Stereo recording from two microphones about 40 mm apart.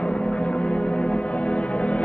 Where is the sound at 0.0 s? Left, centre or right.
Left.